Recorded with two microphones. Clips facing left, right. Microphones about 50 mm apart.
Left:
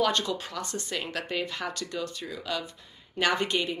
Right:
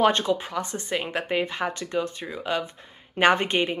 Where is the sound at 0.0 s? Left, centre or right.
Right.